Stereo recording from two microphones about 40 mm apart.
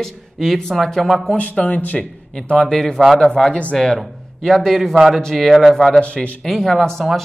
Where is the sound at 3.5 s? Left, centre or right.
Left.